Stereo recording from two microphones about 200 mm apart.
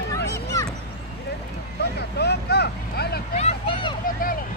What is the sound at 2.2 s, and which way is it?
Vehicle, 55° left (ahead or behind).